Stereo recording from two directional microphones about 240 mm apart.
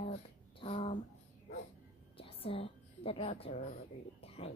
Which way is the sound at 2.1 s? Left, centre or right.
Left.